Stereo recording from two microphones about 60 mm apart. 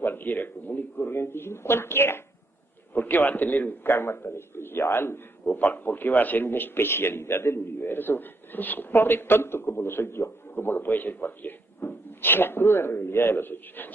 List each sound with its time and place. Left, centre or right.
0.0 s a man's voice: left
5.4 s a man's voice: left